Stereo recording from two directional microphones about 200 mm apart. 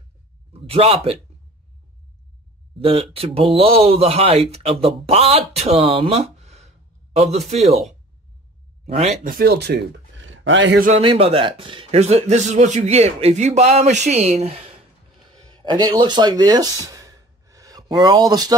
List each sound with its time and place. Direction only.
0.5 s a man's voice: 30° right (ahead or behind)
2.8 s speech: 30° right (ahead or behind)
8.8 s speech: 35° right (ahead or behind); by 10.8 s 65° right (ahead or behind)
11.0 s speech: 30° right (ahead or behind)
15.3 s a sound: 20° right (ahead or behind)
18.3 s speech: 20° right (ahead or behind)